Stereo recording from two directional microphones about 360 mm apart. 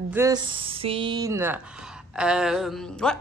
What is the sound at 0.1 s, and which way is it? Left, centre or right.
A woman's voice, centre.